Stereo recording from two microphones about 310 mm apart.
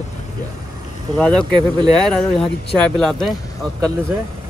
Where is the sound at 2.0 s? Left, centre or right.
Centre.